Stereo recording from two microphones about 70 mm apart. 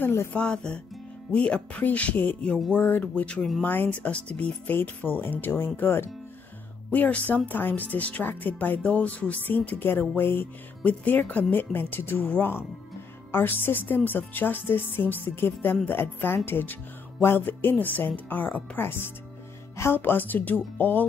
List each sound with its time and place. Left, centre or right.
0.0 s music: left
0.3 s speech: centre